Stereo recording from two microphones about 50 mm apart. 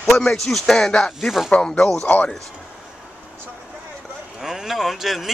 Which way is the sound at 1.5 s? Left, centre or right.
Centre.